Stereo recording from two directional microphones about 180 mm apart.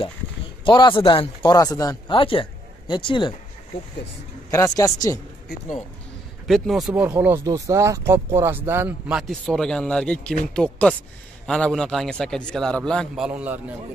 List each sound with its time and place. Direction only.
0.7 s speech: 25° left (ahead or behind)
4.5 s speech: 15° left (ahead or behind)
6.4 s a man's voice: centre (ahead or behind)